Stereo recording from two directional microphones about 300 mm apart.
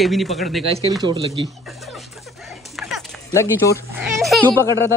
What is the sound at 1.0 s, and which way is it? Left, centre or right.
Speech, centre.